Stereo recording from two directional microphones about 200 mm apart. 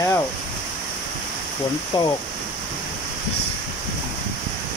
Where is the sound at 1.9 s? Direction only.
25° left (ahead or behind).